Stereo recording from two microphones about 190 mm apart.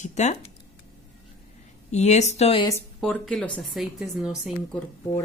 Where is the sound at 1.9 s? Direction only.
35° left (ahead or behind).